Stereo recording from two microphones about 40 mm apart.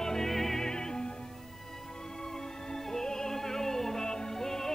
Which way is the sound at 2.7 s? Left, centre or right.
Centre.